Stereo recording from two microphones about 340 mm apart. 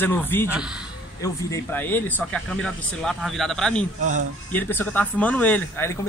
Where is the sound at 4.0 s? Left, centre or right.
Right.